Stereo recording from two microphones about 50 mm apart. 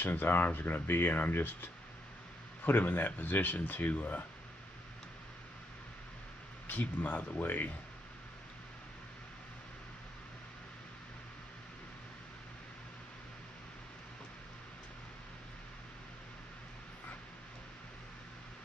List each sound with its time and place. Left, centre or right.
0.0 s speech: left
6.7 s speech: left